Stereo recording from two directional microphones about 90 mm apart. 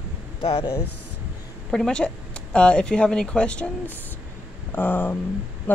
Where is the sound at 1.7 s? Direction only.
5° left (ahead or behind).